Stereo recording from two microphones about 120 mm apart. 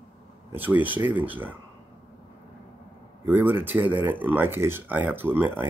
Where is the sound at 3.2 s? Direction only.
15° right (ahead or behind).